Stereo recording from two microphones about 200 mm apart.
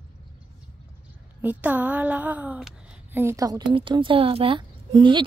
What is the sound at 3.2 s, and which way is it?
A woman's voice, 15° right (ahead or behind).